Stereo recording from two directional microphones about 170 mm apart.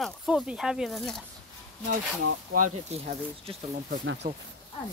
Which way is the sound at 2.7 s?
40° right (ahead or behind).